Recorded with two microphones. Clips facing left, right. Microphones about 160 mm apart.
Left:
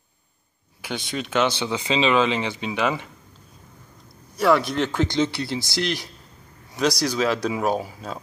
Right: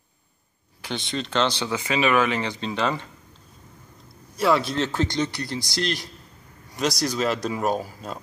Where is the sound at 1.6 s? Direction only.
20° left (ahead or behind).